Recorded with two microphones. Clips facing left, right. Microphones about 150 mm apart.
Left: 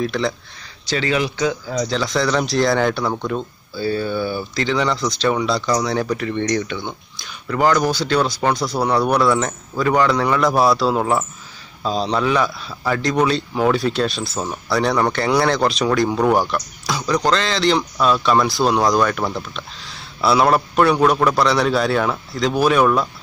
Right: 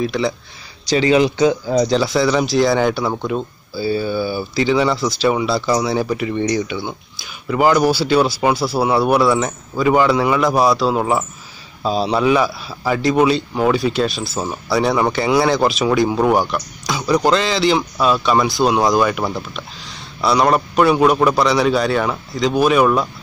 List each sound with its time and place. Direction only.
0.0 s a man's voice: centre (ahead or behind)
0.8 s speech: 15° right (ahead or behind)
1.9 s a man's voice: 10° right (ahead or behind)